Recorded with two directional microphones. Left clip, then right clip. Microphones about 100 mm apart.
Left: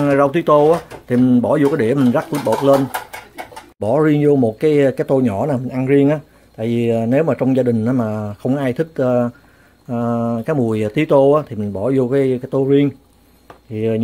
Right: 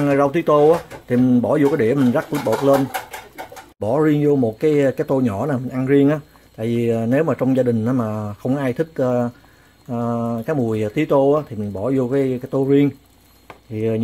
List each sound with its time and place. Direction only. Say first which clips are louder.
0.0 s speech: left 2 dB; 5° left (ahead or behind)
5.9 s speech: left 1 dB; centre (ahead or behind)
12.5 s speech: left 1 dB; 5° left (ahead or behind)